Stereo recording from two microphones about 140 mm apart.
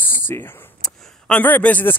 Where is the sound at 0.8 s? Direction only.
5° left (ahead or behind).